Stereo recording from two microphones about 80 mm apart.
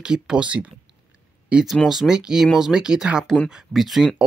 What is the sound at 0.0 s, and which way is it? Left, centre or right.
Speech, centre.